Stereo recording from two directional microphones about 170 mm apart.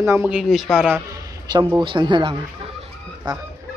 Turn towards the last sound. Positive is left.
turn(degrees=-25)  # may be behind; listen again after turning